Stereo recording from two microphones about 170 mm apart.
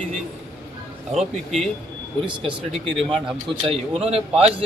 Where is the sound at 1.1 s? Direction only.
Centre (ahead or behind).